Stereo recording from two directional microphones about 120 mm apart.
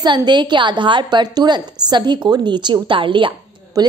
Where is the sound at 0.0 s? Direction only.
40° right (ahead or behind).